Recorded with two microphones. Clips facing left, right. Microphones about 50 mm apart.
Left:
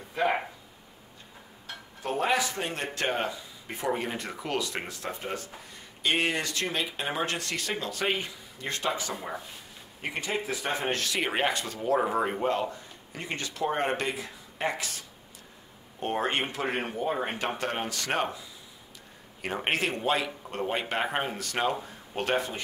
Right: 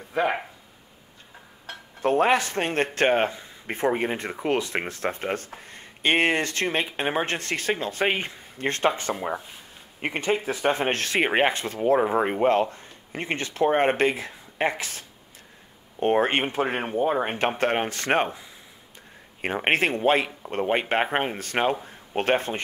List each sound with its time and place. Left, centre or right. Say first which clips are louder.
2.0 s a man's voice: right 7 dB; right
19.4 s a man's voice: right 6 dB; right